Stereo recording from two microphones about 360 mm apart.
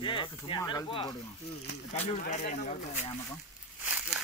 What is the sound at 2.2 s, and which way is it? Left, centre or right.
Speech, centre.